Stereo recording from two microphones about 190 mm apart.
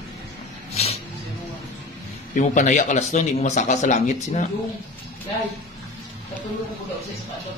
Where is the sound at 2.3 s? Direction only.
40° left (ahead or behind).